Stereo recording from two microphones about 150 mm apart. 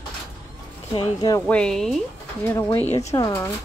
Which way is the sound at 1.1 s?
25° left (ahead or behind).